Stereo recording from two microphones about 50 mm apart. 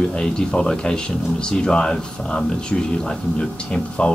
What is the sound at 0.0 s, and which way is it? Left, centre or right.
Speech, centre.